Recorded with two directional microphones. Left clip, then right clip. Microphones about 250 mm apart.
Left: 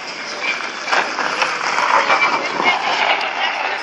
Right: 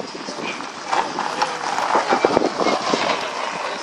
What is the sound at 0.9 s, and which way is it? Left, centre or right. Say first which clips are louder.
Vehicle: left 3 dB; right.